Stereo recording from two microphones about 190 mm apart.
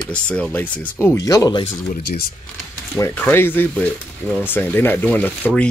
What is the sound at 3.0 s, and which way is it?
Speech, 10° left (ahead or behind).